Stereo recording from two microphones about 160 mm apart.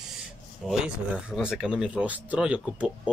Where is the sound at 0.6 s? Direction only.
5° right (ahead or behind).